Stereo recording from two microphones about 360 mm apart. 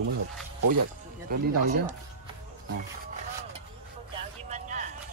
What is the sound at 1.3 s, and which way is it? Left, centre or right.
Speech, right.